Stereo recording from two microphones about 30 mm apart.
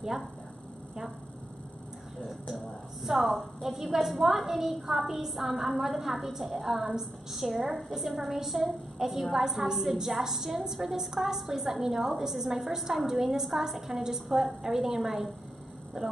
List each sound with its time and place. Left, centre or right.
3.0 s a woman's voice: centre